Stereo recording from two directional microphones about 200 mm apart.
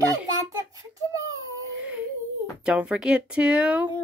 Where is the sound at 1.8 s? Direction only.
10° right (ahead or behind).